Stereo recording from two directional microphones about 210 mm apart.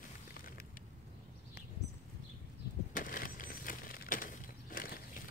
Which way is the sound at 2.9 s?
40° left (ahead or behind).